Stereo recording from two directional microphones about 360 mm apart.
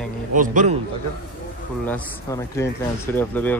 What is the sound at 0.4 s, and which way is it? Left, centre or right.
Speech, right.